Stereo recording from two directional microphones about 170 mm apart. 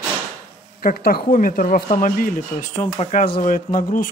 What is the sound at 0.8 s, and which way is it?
Speech, 60° left (ahead or behind).